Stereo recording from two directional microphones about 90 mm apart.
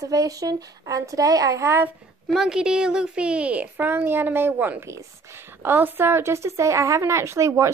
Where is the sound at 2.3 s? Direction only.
5° right (ahead or behind).